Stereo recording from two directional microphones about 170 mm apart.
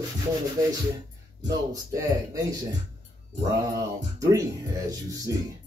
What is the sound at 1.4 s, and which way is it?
Speech, 20° right (ahead or behind).